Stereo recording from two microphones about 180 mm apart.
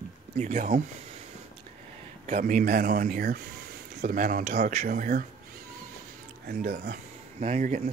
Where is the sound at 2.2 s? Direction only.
50° right (ahead or behind).